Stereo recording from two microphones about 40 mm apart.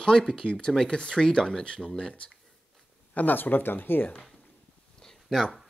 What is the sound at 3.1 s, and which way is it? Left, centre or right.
Speech, left.